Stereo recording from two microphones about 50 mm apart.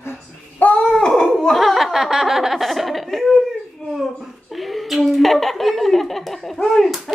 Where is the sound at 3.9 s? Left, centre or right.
Centre.